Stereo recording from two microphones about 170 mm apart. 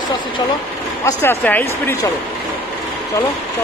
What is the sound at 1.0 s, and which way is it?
Speech, 15° left (ahead or behind).